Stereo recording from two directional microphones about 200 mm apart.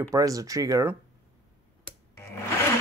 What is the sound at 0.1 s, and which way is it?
Speech, 15° right (ahead or behind).